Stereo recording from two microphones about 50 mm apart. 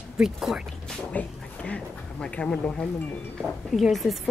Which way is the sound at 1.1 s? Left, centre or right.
Left.